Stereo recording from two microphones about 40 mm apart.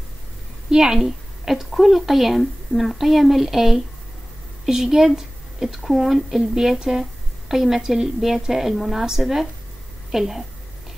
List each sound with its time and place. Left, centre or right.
0.7 s a woman's voice: centre